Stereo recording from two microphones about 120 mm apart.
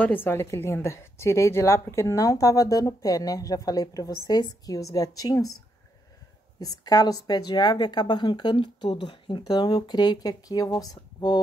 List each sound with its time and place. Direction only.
0.0 s a woman's voice: 15° left (ahead or behind)
6.6 s a woman's voice: 35° left (ahead or behind)